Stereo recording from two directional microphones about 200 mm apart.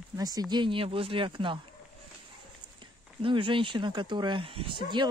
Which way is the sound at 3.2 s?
25° right (ahead or behind).